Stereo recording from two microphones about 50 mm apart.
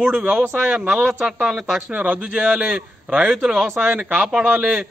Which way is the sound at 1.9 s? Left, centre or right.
Right.